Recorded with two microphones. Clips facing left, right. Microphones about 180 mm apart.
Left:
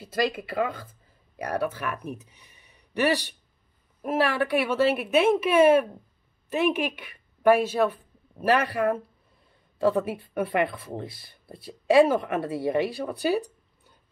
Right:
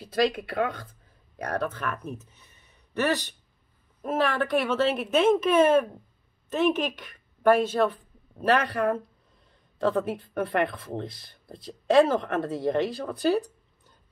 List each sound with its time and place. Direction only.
0.0 s a woman's voice: 5° left (ahead or behind)